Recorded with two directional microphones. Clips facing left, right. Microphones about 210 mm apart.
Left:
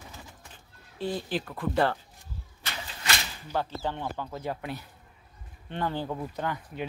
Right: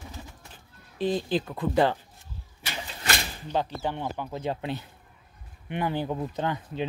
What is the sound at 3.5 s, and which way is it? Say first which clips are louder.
Speech: right 2 dB; 15° right (ahead or behind).